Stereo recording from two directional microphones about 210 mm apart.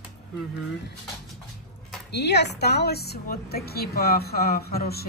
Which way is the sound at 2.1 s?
55° left (ahead or behind).